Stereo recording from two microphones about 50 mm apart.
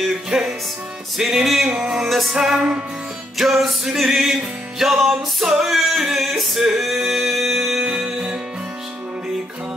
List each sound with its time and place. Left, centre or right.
0.3 s music: centre
1.7 s music: centre
2.0 s music: centre
2.3 s music: centre
3.3 s music: centre
7.8 s music: centre